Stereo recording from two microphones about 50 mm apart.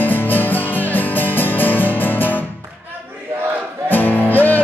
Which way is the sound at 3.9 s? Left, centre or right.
Left.